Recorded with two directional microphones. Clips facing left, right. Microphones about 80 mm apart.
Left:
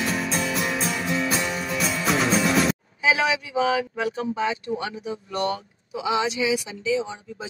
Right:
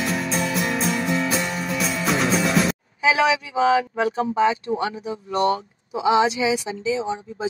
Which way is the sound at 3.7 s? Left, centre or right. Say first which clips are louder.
Right 5 dB; right.